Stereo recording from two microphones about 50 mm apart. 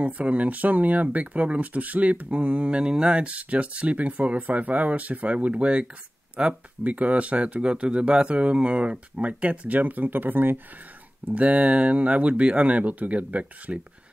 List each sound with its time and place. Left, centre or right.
0.0 s speech: right
11.2 s speech: right